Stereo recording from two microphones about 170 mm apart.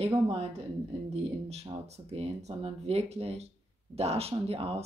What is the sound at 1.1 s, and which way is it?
Speech, 40° right (ahead or behind).